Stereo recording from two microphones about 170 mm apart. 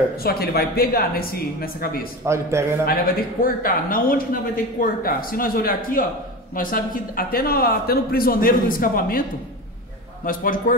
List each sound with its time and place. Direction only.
0.2 s speech: 65° left (ahead or behind)
2.2 s a man's voice: 15° right (ahead or behind)
2.9 s speech: 55° left (ahead or behind)
10.2 s speech: 55° left (ahead or behind)